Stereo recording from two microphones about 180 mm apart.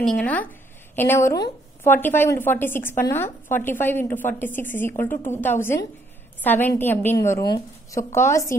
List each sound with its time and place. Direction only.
0.0 s a woman's voice: 5° left (ahead or behind)